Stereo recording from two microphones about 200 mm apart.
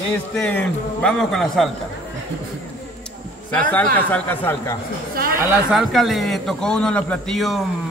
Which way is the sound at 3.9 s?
10° left (ahead or behind).